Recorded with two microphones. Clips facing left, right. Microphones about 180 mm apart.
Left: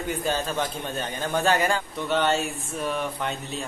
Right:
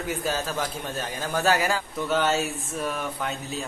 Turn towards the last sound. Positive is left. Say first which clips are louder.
# even
turn(degrees=0)  # may be behind; listen again after turning